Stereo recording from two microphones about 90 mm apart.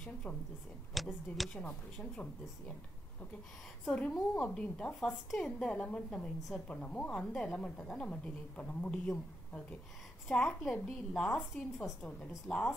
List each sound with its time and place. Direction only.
0.9 s speech: centre (ahead or behind)
3.9 s a woman's voice: 15° left (ahead or behind)
5.7 s a woman's voice: 15° left (ahead or behind)